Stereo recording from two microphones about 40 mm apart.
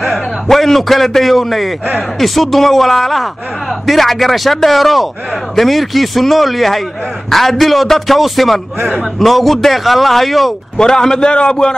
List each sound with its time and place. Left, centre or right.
0.0 s a man's voice: centre
10.8 s a man's voice: centre